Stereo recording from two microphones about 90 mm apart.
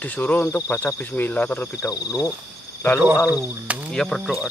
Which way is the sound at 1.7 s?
40° left (ahead or behind).